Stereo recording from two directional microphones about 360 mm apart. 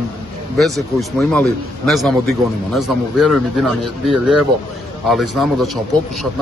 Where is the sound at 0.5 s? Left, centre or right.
Centre.